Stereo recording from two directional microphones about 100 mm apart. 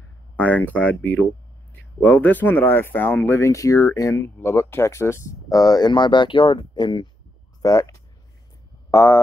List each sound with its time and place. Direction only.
0.4 s speech: 15° left (ahead or behind); by 7.1 s 50° left (ahead or behind)
7.6 s speech: 35° left (ahead or behind)
8.9 s speech: 25° left (ahead or behind)